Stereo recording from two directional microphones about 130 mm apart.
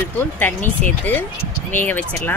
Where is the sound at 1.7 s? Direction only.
15° left (ahead or behind).